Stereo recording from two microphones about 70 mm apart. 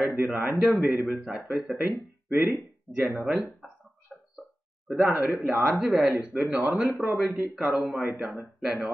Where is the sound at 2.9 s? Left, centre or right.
Left.